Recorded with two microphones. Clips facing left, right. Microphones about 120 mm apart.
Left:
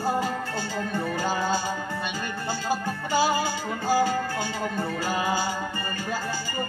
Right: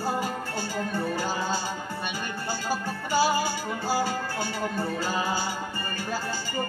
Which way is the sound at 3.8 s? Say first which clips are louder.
Left 5 dB; 50° left (ahead or behind).